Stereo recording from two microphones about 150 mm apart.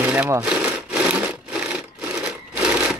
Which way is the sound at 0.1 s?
20° right (ahead or behind).